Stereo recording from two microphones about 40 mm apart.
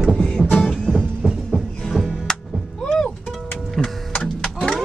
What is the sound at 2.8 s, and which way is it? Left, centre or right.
Music, centre.